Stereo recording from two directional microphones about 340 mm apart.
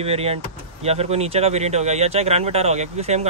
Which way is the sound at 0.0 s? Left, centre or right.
Centre.